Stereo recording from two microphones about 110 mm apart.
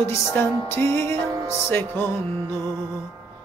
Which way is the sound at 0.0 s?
25° left (ahead or behind).